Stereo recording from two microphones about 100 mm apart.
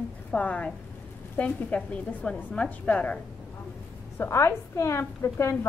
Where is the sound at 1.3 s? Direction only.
15° left (ahead or behind).